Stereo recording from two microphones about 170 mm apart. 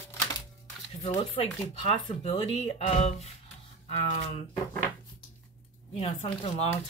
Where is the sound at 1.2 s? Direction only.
35° left (ahead or behind).